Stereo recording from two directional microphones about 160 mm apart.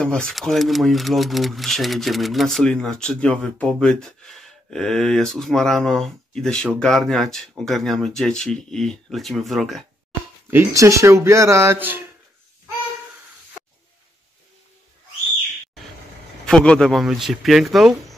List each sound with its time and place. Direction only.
0.0 s speech: 5° left (ahead or behind)
10.5 s speech: 15° right (ahead or behind)
16.4 s speech: 5° left (ahead or behind)